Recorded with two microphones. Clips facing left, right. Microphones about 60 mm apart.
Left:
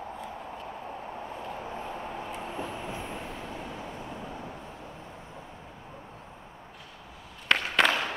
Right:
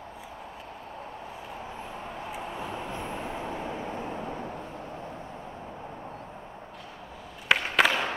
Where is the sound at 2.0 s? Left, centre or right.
Centre; by 3.8 s right.